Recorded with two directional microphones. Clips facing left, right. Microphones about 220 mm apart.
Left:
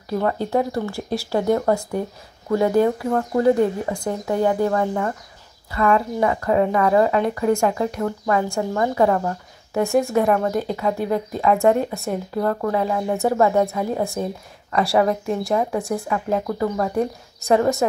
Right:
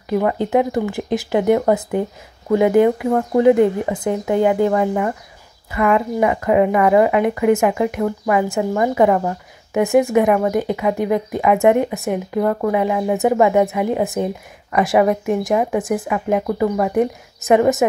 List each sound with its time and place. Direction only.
0.1 s speech: 15° right (ahead or behind)